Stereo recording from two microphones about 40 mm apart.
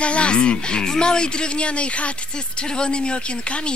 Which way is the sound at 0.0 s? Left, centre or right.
Left.